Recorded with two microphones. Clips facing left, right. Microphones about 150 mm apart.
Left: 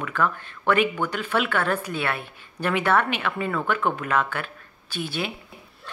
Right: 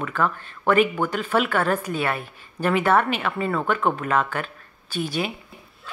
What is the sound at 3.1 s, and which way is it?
A woman's voice, centre (ahead or behind).